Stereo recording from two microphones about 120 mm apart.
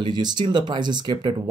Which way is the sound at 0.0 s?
35° right (ahead or behind).